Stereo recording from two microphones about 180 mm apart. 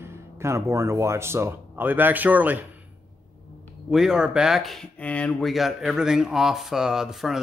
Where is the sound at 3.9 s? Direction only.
5° right (ahead or behind).